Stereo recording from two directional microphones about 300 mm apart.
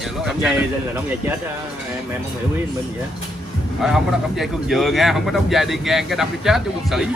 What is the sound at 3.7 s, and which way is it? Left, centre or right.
A man's voice, centre.